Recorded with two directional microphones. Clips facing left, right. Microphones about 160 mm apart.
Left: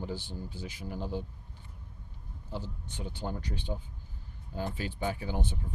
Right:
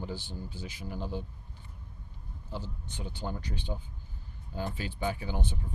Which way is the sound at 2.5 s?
50° left (ahead or behind).